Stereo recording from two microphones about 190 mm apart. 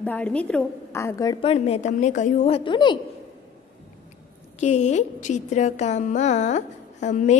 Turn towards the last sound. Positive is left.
turn(degrees=40)  # may be behind; listen again after turning